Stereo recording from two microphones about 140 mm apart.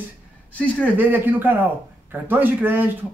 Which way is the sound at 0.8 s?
15° right (ahead or behind).